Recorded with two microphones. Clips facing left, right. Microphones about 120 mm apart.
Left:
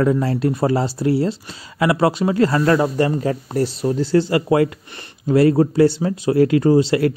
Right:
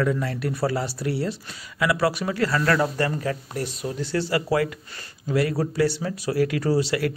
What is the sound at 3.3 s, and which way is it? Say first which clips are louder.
Speech: left 8 dB; 30° left (ahead or behind).